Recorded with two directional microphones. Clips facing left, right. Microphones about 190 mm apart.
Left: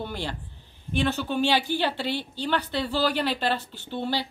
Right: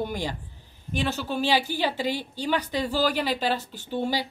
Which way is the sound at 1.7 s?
10° right (ahead or behind).